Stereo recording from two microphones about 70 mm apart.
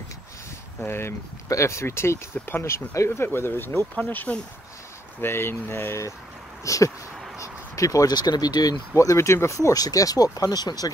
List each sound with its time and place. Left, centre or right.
0.8 s speech: left
1.5 s speech: left
3.1 s speech: left
3.9 s speech: left
5.2 s speech: left
6.6 s speech: left
7.3 s a sound: left
8.1 s speech: left
8.9 s speech: left